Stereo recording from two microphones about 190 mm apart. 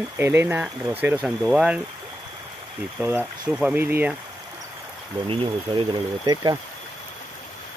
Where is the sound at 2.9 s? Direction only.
10° right (ahead or behind).